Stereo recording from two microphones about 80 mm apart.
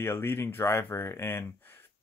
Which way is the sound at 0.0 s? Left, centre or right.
Left.